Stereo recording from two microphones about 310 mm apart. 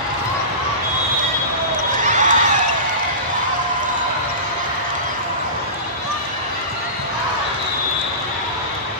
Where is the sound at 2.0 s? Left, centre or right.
Right.